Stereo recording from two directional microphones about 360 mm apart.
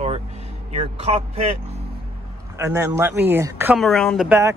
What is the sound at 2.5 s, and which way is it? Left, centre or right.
A woman's voice, centre.